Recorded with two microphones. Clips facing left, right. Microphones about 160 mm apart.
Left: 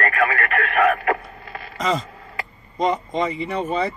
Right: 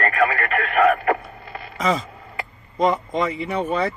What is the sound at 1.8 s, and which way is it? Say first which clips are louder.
Speech: right 1 dB; 5° right (ahead or behind).